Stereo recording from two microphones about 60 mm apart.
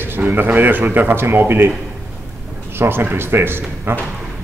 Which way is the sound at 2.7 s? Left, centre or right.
Right.